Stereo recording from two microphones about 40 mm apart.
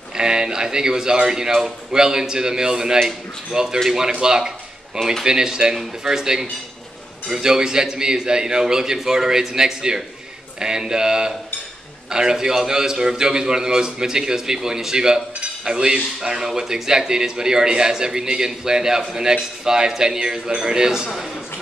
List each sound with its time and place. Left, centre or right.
0.1 s speech: centre